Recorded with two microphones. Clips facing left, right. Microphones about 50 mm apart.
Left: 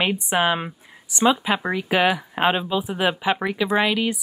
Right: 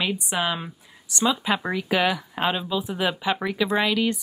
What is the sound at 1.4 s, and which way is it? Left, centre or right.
Speech, centre.